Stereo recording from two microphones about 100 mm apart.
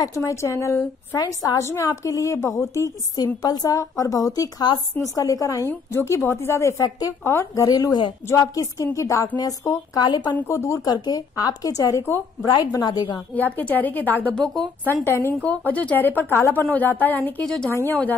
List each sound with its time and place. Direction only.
0.0 s a woman's voice: 30° left (ahead or behind)
5.7 s a woman's voice: 20° left (ahead or behind)
6.8 s a woman's voice: 40° left (ahead or behind)
7.2 s a woman's voice: 25° left (ahead or behind)
7.6 s a woman's voice: 40° left (ahead or behind)
10.5 s a woman's voice: 30° left (ahead or behind)
13.3 s a woman's voice: 15° left (ahead or behind)